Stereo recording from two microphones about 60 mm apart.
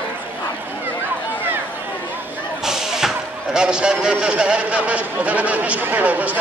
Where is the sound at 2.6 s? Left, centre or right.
Centre.